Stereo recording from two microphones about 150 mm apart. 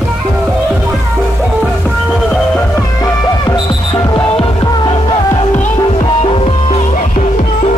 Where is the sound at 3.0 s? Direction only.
25° left (ahead or behind).